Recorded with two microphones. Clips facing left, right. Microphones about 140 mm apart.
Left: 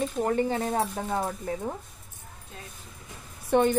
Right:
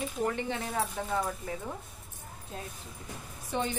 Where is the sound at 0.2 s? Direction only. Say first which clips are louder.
Left 6 dB; 40° left (ahead or behind).